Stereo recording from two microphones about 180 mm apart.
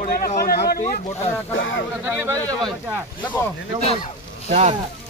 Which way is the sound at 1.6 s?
90° left.